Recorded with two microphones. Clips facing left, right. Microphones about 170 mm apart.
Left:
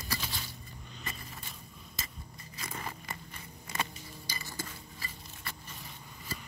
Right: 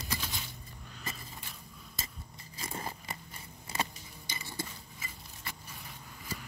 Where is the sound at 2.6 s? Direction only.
30° right (ahead or behind).